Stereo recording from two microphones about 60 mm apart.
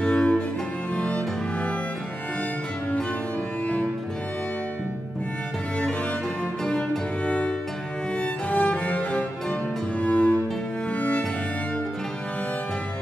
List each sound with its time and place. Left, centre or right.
0.0 s music: centre
6.6 s music: centre
7.2 s cello: centre
8.2 s music: centre